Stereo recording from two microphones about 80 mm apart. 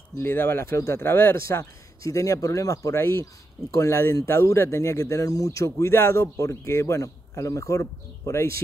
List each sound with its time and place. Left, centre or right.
0.2 s speech: left